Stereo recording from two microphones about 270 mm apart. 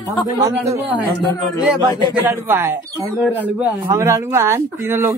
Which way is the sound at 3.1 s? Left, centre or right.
Centre.